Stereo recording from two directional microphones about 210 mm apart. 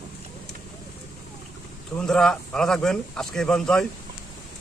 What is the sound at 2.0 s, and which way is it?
Speech, 5° left (ahead or behind).